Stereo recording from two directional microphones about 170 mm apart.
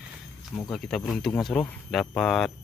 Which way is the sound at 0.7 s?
Centre (ahead or behind).